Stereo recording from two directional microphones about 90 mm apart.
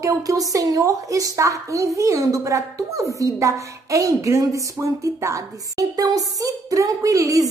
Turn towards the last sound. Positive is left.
turn(degrees=-35)  # may be behind; listen again after turning